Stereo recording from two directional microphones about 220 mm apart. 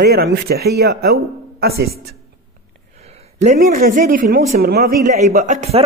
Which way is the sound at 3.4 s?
35° right (ahead or behind).